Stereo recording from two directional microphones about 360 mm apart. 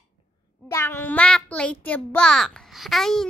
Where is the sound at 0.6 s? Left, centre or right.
Centre.